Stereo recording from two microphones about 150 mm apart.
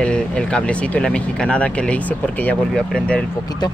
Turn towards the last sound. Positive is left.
turn(degrees=30)  # may be behind; listen again after turning